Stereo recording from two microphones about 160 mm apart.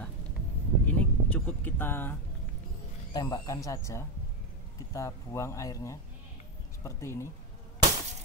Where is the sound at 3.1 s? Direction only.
20° left (ahead or behind).